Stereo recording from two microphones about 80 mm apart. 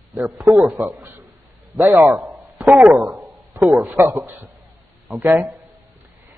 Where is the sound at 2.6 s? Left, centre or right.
Centre.